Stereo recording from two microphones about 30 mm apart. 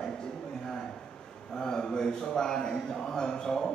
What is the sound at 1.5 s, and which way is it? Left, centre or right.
A man's voice, left.